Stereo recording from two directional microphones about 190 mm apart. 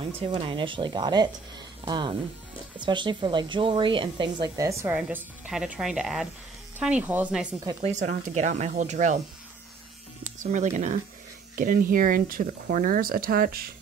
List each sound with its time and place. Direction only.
0.0 s speech: 30° right (ahead or behind); by 7.4 s 10° right (ahead or behind)
7.8 s speech: 40° right (ahead or behind)
10.2 s speech: 40° right (ahead or behind)